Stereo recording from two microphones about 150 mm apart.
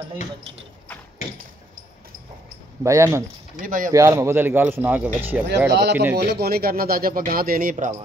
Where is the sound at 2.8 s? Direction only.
20° right (ahead or behind).